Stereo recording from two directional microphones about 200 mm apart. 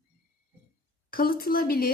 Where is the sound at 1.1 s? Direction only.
45° left (ahead or behind).